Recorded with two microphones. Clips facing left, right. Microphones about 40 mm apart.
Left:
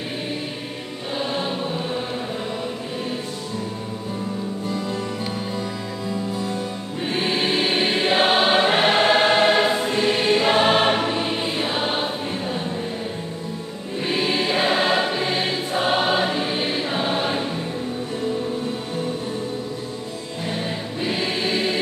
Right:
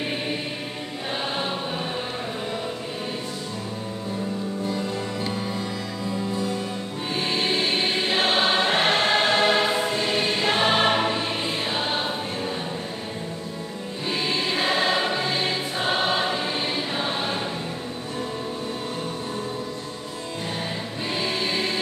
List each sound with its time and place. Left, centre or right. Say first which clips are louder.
7.2 s choir: left 3 dB; centre
11.1 s music: left 3 dB; centre
14.0 s choir: left 4 dB; centre
21.1 s choir: left 2 dB; centre